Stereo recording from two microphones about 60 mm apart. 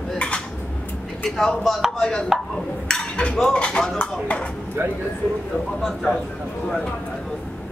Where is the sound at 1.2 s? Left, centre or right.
Centre.